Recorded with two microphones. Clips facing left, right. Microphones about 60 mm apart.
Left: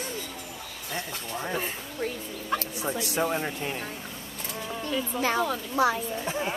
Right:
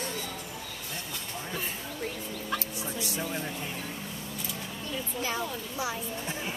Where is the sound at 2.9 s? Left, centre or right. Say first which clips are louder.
Left 8 dB; left.